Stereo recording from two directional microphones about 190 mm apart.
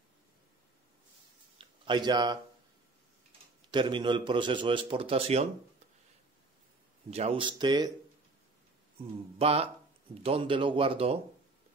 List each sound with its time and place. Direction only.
1.6 s a sound: 25° right (ahead or behind)
3.7 s a man's voice: 25° right (ahead or behind)
7.1 s a man's voice: 35° right (ahead or behind)
9.4 s a man's voice: 30° right (ahead or behind)